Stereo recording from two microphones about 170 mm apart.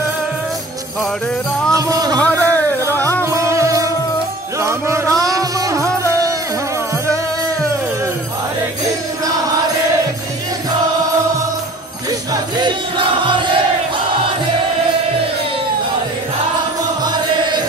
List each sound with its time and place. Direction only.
1.7 s music: 20° right (ahead or behind)
2.1 s a sound: 10° left (ahead or behind)
2.9 s music: 10° left (ahead or behind)
3.3 s music: 15° right (ahead or behind)
17.0 s music: 25° right (ahead or behind)